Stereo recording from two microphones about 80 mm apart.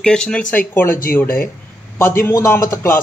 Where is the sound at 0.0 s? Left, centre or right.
Centre.